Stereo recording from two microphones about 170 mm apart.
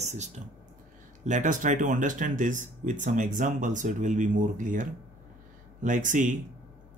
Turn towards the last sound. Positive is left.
turn(degrees=-50)  # may be behind; listen again after turning